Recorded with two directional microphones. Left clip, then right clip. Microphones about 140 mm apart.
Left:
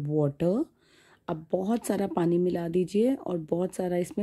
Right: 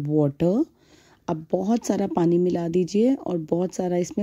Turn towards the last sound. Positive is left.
turn(degrees=-35)  # may be behind; listen again after turning